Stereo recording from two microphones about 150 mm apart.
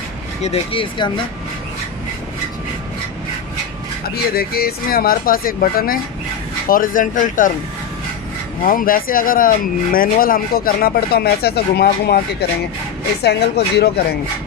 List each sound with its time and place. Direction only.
0.4 s speech: 40° left (ahead or behind)
4.1 s speech: 90° left; by 7.5 s 65° left (ahead or behind)
8.6 s speech: 70° left (ahead or behind); by 14.0 s 90° left